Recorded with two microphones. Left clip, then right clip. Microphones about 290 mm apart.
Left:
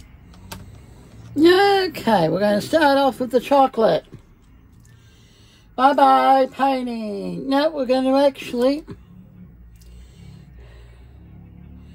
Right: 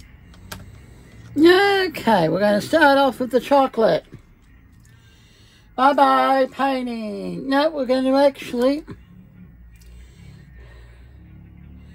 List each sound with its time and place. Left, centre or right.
0.9 s a sound: centre
1.7 s speech: centre
5.8 s speech: centre
10.1 s music: centre